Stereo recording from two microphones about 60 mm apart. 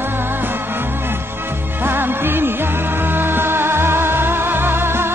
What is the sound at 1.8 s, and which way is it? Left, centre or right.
Music, right.